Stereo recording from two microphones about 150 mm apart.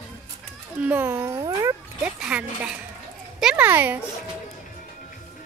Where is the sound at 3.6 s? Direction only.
15° right (ahead or behind).